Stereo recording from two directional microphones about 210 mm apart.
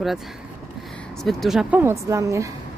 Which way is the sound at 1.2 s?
Centre (ahead or behind).